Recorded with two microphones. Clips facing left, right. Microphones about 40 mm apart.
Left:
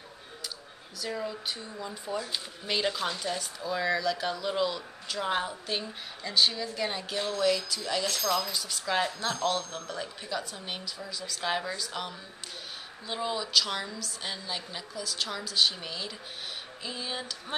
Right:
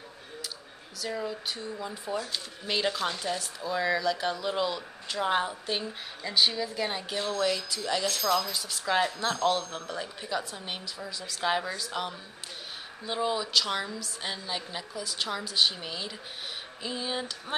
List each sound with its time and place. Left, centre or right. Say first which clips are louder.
0.9 s speech: right 1 dB; centre
2.1 s speech: left 1 dB; centre
2.7 s speech: right 1 dB; centre